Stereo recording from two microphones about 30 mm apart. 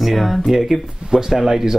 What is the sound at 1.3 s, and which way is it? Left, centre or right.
Speech, centre.